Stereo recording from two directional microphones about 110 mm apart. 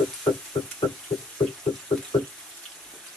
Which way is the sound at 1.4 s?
45° left (ahead or behind).